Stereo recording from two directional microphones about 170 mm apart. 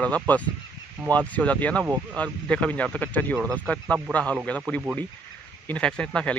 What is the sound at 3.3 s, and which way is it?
Speech, 15° right (ahead or behind).